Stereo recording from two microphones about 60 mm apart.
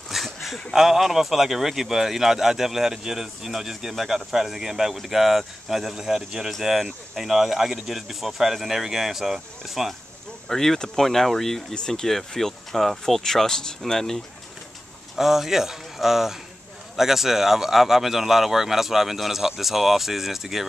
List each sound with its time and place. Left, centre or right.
0.1 s a sound: centre
0.7 s a man's voice: centre
15.1 s a man's voice: centre